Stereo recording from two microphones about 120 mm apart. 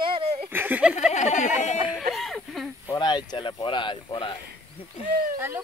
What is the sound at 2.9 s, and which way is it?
Speech, 35° left (ahead or behind).